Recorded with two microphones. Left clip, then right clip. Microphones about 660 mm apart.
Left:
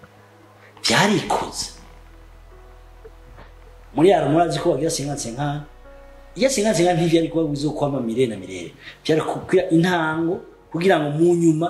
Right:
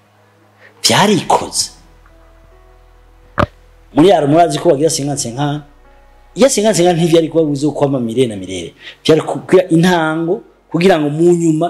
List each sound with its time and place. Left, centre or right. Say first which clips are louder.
0.7 s a man's voice: right 7 dB; right
3.9 s a man's voice: right 7 dB; right